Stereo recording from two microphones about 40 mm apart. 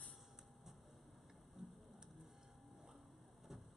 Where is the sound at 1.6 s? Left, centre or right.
Centre.